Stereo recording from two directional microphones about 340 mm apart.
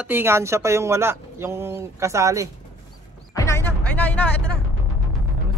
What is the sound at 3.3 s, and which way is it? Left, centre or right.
Music, centre.